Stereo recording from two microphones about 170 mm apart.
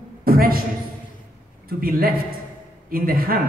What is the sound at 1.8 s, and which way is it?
A man's voice, 60° right (ahead or behind).